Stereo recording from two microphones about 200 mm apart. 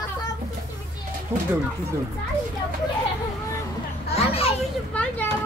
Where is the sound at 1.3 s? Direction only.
10° right (ahead or behind).